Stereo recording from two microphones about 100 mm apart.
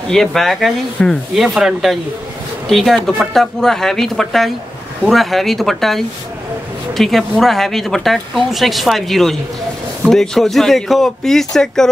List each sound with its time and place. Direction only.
0.1 s speech: 5° left (ahead or behind)